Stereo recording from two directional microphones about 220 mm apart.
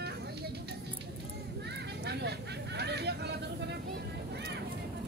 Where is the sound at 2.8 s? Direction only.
50° right (ahead or behind).